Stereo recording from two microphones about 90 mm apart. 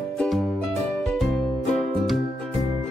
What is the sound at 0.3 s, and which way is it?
Music, 5° left (ahead or behind).